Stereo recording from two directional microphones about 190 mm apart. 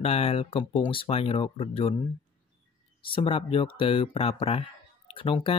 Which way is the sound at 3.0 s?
30° left (ahead or behind).